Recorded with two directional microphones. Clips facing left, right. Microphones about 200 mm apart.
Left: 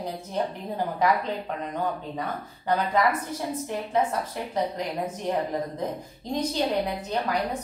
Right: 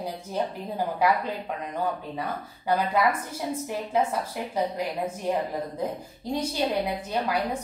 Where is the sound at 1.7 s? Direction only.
10° right (ahead or behind).